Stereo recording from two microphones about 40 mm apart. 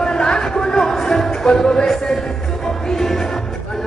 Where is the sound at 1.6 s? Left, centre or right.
Centre.